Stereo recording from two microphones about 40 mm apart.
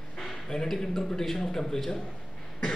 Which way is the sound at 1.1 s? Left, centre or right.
Centre.